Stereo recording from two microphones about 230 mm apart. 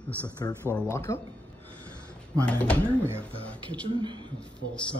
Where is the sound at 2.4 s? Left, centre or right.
Centre.